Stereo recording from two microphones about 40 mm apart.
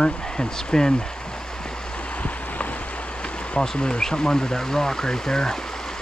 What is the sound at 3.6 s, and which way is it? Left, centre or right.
Speech, left.